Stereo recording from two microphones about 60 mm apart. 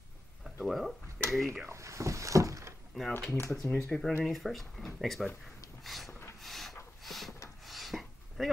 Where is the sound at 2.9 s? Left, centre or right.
Centre.